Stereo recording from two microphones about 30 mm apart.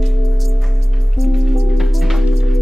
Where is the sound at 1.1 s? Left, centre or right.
Centre.